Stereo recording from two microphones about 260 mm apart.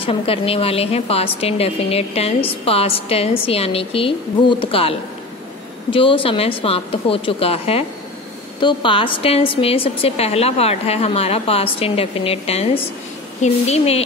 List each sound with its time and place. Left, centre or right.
0.0 s a woman's voice: left